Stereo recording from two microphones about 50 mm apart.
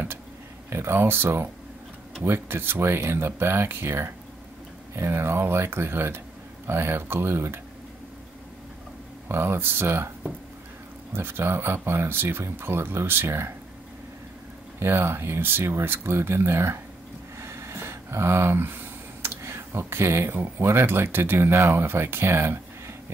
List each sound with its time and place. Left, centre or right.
0.7 s speech: right
9.3 s speech: right
11.1 s speech: right
14.8 s speech: right
17.4 s a sound: right
20.7 s speech: right